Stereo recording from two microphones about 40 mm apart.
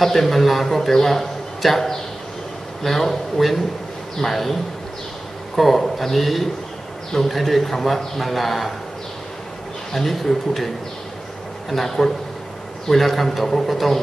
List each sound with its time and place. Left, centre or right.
0.0 s a man's voice: centre
5.6 s a man's voice: centre
9.9 s a man's voice: centre
11.7 s a man's voice: centre